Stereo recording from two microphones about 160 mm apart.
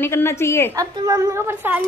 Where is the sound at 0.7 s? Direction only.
25° right (ahead or behind).